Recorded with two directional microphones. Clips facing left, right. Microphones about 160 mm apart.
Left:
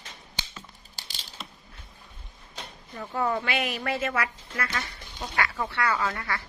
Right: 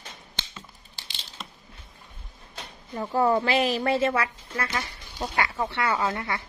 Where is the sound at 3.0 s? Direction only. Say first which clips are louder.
Right 6 dB; 35° right (ahead or behind).